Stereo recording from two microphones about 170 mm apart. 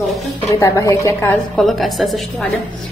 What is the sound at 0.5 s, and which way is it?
Speech, 20° left (ahead or behind).